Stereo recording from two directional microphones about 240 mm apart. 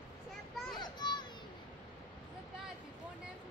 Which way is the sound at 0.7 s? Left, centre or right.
Centre.